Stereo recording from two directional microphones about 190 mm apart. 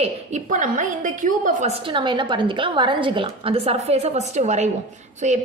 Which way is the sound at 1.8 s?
25° right (ahead or behind).